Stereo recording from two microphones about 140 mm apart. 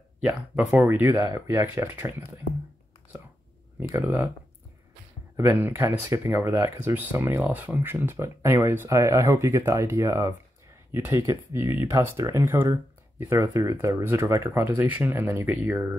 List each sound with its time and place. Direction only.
0.2 s speech: 5° right (ahead or behind)
5.3 s speech: 15° right (ahead or behind)